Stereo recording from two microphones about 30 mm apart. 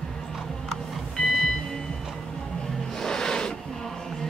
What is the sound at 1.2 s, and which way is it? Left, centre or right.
Music, centre.